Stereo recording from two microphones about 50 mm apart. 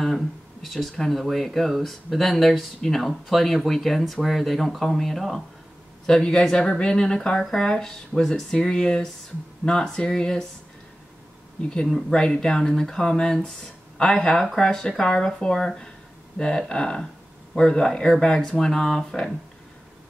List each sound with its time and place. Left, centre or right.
0.0 s speech: centre
6.0 s speech: centre
11.6 s speech: centre